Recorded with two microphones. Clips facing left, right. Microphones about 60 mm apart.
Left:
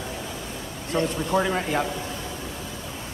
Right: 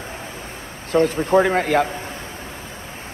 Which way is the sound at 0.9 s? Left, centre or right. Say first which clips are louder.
Right 7 dB; right.